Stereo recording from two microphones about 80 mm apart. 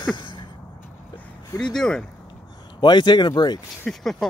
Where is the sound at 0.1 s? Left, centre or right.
Left.